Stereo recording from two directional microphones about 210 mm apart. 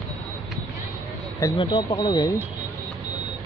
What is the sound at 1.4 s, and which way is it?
Speech, 20° left (ahead or behind).